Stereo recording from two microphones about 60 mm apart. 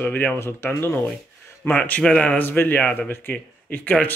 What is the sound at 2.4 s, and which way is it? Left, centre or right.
Speech, left.